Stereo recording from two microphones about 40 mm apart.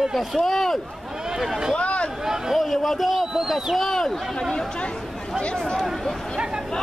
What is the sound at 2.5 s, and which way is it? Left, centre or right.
A man's voice, centre.